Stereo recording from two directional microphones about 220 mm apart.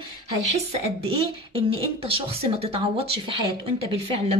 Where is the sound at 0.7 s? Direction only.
25° right (ahead or behind).